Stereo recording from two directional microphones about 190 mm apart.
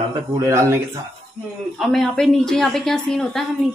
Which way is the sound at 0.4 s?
15° right (ahead or behind).